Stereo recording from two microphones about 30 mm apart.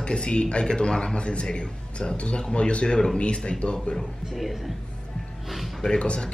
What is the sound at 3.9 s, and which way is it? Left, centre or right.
Speech, left.